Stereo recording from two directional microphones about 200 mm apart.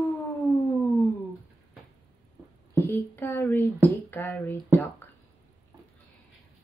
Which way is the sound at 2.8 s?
10° left (ahead or behind).